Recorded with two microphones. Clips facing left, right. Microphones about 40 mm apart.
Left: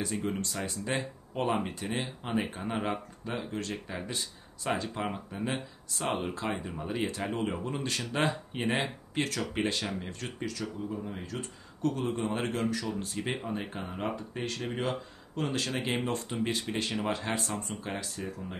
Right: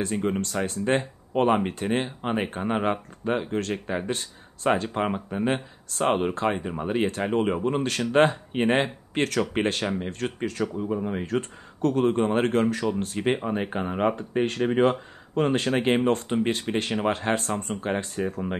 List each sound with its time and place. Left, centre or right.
0.1 s speech: right